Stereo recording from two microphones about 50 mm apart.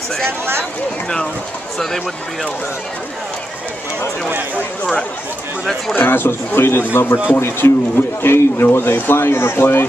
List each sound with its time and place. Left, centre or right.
0.2 s speech: right
5.9 s speech: left